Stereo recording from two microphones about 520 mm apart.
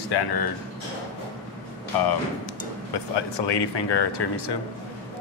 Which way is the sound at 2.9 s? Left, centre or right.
Left.